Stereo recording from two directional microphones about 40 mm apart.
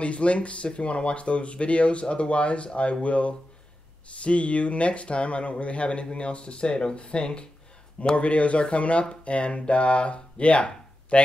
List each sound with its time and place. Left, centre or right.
0.0 s speech: left